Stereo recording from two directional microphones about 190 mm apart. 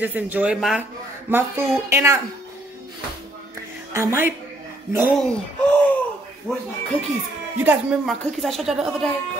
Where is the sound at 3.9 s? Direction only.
15° right (ahead or behind).